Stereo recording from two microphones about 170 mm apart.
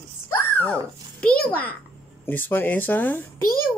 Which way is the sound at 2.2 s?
10° left (ahead or behind).